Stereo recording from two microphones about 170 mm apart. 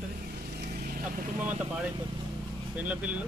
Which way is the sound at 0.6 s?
60° right (ahead or behind).